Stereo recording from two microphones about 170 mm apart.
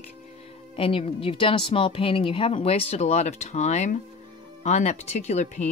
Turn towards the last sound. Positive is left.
turn(degrees=40)  # may be behind; listen again after turning